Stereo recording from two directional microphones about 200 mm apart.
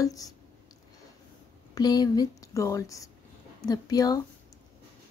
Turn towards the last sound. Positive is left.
turn(degrees=20)  # may be behind; listen again after turning